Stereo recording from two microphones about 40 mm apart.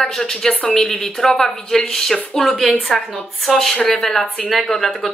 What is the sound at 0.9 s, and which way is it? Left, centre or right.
Speech, centre.